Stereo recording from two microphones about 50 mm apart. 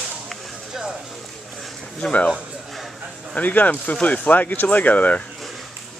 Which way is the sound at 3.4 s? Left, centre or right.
Left.